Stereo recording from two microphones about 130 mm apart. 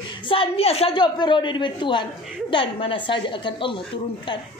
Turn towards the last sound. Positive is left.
turn(degrees=40)  # may be behind; listen again after turning